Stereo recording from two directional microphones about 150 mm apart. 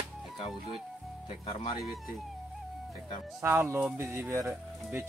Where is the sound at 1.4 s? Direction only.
40° left (ahead or behind).